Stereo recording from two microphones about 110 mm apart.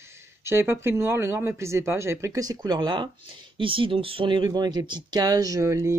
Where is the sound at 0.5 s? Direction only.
25° right (ahead or behind).